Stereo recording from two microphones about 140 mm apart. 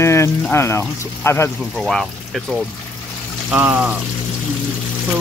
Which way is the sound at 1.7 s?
Centre (ahead or behind).